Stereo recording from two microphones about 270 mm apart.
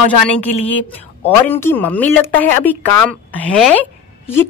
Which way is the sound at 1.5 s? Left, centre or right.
Centre.